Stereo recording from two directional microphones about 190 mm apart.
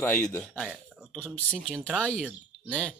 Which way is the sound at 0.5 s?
Centre (ahead or behind).